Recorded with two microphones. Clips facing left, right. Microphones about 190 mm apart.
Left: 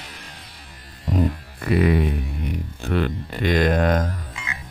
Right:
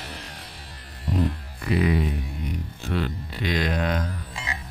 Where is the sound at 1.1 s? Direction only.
55° left (ahead or behind).